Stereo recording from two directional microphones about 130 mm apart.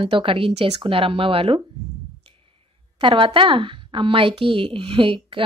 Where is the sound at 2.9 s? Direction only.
40° right (ahead or behind).